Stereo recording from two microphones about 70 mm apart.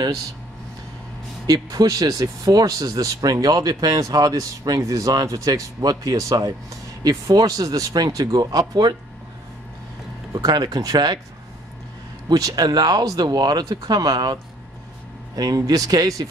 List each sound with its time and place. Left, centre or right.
1.5 s speech: right
10.5 s speech: right
12.3 s speech: right